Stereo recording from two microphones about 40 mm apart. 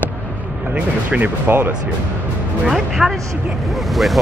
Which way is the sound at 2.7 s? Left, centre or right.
Centre.